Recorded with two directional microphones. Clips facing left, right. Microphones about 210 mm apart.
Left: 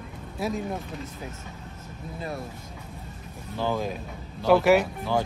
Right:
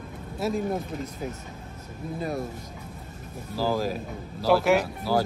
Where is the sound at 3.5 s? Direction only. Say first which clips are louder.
Right 2 dB; centre (ahead or behind).